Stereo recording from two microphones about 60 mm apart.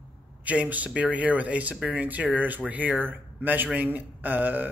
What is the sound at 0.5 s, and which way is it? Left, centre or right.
A man's voice, right.